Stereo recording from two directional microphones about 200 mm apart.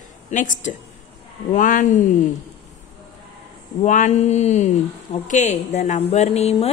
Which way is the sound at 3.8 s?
35° left (ahead or behind).